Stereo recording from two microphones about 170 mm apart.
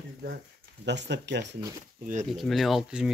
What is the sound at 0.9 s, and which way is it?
Speech, 90° right.